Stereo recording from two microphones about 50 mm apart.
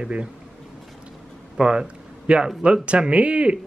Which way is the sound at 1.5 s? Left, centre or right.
Centre.